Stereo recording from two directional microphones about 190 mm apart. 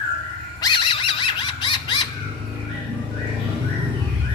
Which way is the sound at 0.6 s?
25° left (ahead or behind).